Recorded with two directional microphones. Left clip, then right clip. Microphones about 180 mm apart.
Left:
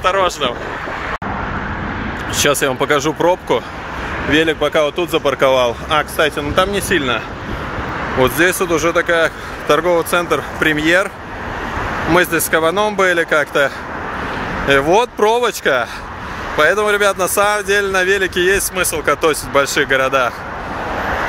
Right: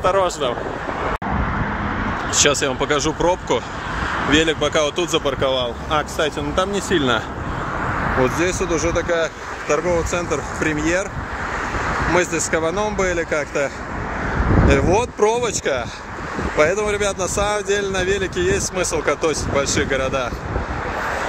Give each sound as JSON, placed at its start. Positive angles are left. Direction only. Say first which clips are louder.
{"t": 0.0, "sound": "speech", "louder": "left 3 dB", "side_deg": -10}
{"t": 2.4, "sound": "speech", "louder": "left 5 dB", "side_deg": 5}
{"t": 7.0, "sound": "speech", "louder": "left 1 dB", "side_deg": -25}
{"t": 8.2, "sound": "speech", "louder": "left 8 dB", "side_deg": 0}
{"t": 12.1, "sound": "speech", "louder": "left 7 dB", "side_deg": 0}
{"t": 14.7, "sound": "speech", "louder": "left 7 dB", "side_deg": 0}